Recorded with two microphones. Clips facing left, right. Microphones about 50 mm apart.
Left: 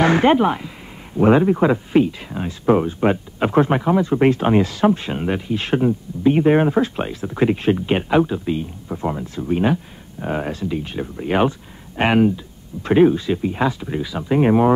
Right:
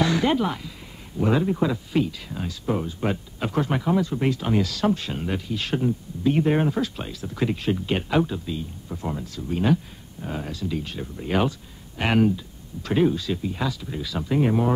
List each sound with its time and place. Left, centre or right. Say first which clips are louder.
0.0 s speech: left 7 dB; left
2.6 s speech: left 10 dB; left
10.7 s speech: left 5 dB; left
12.8 s speech: left 7 dB; left
14.1 s speech: left 4 dB; left
14.4 s speech: left 8 dB; left